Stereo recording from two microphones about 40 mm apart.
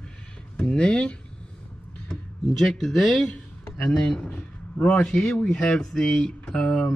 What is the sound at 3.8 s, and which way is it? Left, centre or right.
Speech, left.